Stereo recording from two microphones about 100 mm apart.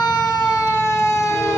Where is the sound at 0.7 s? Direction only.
30° left (ahead or behind).